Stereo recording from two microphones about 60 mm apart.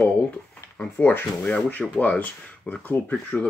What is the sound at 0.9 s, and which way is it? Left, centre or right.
Speech, left.